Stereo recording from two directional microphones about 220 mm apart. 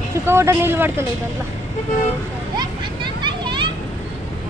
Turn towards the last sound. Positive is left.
turn(degrees=-20)  # may be behind; listen again after turning